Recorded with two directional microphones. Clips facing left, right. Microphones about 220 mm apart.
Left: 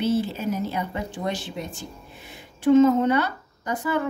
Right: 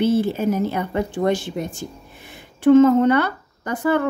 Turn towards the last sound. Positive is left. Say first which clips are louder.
# right 5 dB
turn(degrees=-55)  # may be behind; listen again after turning